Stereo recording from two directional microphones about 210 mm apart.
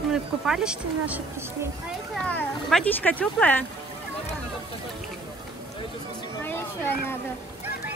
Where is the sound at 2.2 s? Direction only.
5° left (ahead or behind).